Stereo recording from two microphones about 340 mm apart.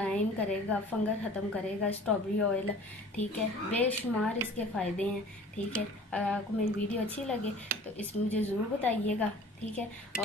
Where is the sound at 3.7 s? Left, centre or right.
Centre.